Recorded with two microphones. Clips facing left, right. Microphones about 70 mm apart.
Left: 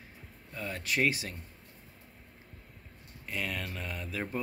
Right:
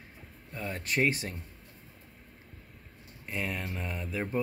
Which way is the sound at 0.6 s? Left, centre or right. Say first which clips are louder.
Right 1 dB; right.